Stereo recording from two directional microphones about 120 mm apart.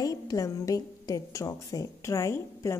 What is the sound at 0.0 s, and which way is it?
A woman's voice, 30° left (ahead or behind).